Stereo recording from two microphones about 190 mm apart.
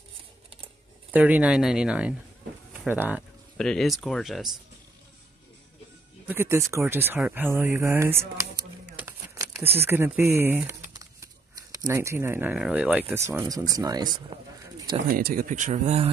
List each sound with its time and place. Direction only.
1.1 s speech: 5° right (ahead or behind)
3.5 s speech: 5° left (ahead or behind)
6.2 s speech: 10° right (ahead or behind)
8.9 s crumpling: 15° right (ahead or behind)
9.8 s speech: 10° right (ahead or behind)
15.1 s speech: 45° right (ahead or behind)